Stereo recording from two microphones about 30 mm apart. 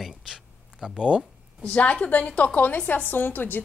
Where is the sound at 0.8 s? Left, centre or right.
Right.